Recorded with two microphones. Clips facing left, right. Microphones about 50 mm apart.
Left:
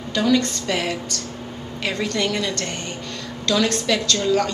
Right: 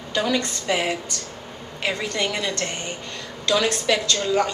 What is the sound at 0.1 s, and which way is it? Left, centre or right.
A woman's voice, centre.